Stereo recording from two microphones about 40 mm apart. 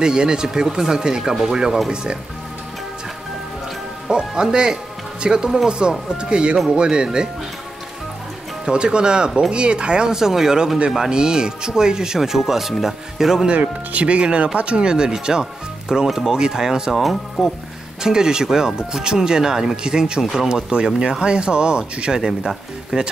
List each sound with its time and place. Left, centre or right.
0.0 s speech: right
4.1 s speech: centre
8.6 s speech: right
10.1 s speech: centre
13.5 s speech: right; by 16.9 s centre
16.9 s speech: centre
18.0 s speech: centre